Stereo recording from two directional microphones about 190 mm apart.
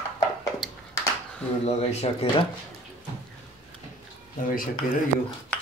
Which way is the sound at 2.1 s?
30° left (ahead or behind).